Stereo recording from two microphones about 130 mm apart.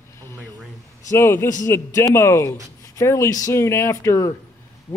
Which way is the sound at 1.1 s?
20° left (ahead or behind).